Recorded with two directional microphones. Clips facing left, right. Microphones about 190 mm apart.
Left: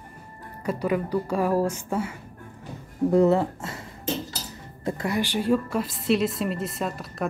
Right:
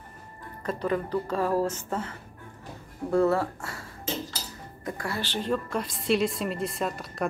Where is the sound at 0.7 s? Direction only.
10° left (ahead or behind).